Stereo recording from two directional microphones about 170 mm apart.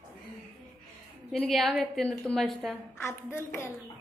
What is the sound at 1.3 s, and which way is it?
A woman's voice, centre (ahead or behind).